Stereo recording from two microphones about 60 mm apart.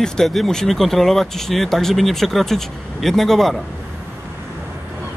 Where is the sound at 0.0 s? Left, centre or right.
Centre.